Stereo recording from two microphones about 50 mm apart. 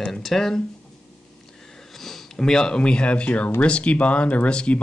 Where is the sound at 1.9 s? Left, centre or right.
Centre; by 4.8 s left.